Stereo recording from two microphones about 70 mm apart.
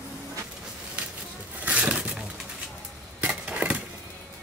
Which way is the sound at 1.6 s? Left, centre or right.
Centre.